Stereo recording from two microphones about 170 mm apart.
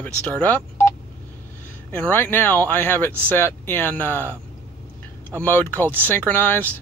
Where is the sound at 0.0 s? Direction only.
10° left (ahead or behind).